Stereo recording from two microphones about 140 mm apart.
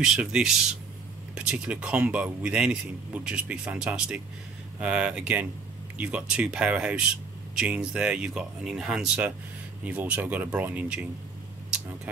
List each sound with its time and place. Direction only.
0.0 s a man's voice: 5° right (ahead or behind)